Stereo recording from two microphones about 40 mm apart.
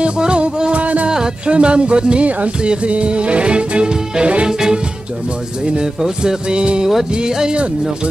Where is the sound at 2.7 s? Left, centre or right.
Right.